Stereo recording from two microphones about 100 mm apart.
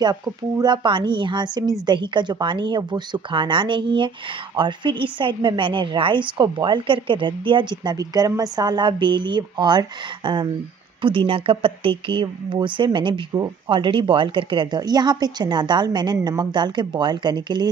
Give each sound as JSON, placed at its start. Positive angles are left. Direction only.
{"t": 0.0, "sound": "a woman's voice", "side_deg": -40}
{"t": 11.0, "sound": "a woman's voice", "side_deg": -60}